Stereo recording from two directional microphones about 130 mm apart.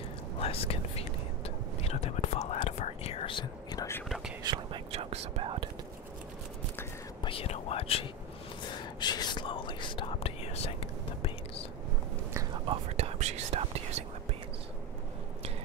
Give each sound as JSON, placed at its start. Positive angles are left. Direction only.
{"t": 0.4, "sound": "whispering", "side_deg": 50}
{"t": 4.4, "sound": "whispering", "side_deg": -30}
{"t": 4.9, "sound": "whispering", "side_deg": -50}
{"t": 7.2, "sound": "whispering", "side_deg": 50}
{"t": 9.0, "sound": "whispering", "side_deg": 35}
{"t": 12.6, "sound": "whispering", "side_deg": -50}